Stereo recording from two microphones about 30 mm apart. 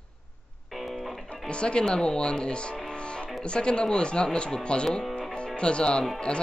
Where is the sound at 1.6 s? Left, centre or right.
Left.